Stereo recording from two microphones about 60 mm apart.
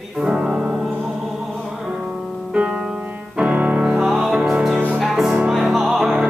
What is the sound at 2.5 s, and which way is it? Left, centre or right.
Music, right.